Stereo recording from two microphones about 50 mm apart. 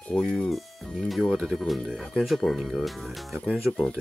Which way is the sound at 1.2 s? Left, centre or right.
Centre.